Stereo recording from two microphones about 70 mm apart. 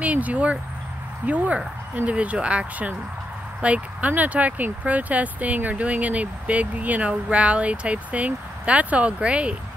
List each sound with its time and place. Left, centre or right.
0.0 s speech: right